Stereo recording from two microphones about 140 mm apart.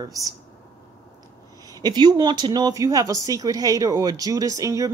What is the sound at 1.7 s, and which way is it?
Speech, 30° right (ahead or behind).